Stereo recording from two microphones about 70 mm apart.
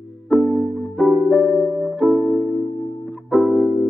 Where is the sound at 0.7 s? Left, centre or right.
Centre.